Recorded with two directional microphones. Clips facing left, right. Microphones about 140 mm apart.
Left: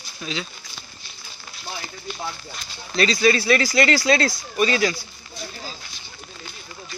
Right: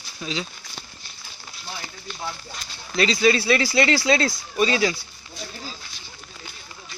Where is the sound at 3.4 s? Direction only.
25° right (ahead or behind).